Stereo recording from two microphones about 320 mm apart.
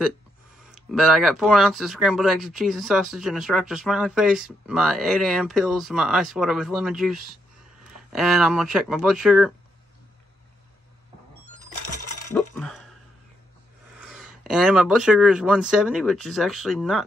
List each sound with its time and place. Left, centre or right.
0.7 s speech: centre
12.3 s cutlery: centre
14.0 s speech: centre